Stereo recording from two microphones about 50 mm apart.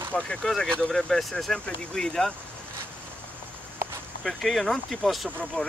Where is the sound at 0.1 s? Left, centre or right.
Centre.